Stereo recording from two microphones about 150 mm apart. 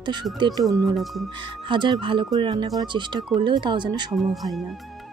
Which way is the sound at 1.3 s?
30° right (ahead or behind).